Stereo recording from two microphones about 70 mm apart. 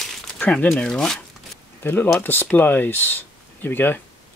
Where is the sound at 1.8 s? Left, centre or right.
Left.